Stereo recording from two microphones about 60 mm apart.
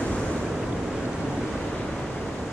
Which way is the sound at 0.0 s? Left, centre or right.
Centre.